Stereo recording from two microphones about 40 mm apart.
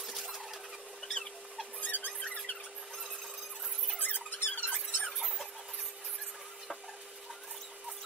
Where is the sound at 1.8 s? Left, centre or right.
Left.